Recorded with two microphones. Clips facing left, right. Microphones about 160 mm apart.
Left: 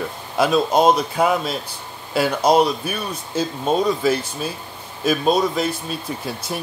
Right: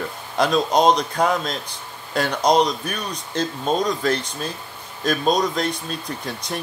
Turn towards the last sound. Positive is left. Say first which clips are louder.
# left 1 dB
turn(degrees=5)  # may be behind; listen again after turning